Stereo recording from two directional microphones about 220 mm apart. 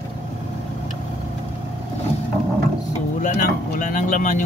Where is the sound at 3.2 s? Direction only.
35° left (ahead or behind).